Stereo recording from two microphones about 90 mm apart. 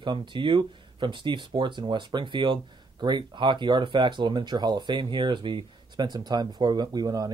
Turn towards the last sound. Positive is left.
turn(degrees=-45)  # may be behind; listen again after turning